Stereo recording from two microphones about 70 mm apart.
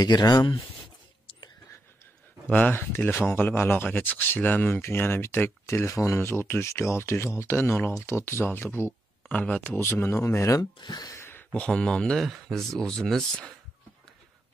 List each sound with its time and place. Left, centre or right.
0.0 s speech: left
2.5 s speech: left
5.9 s speech: left
7.9 s speech: left
9.3 s speech: centre
9.8 s speech: left
10.8 s speech: left
11.1 s a sound: left
11.5 s speech: centre